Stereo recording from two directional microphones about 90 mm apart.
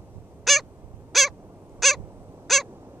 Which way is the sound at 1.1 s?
Centre (ahead or behind).